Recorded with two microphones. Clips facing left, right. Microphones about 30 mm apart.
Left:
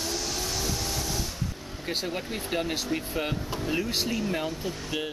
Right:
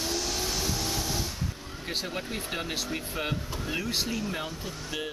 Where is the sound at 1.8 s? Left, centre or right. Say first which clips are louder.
Left 2 dB; centre.